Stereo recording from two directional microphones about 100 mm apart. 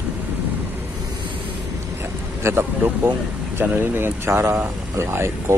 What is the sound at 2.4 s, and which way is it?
Speech, 25° right (ahead or behind).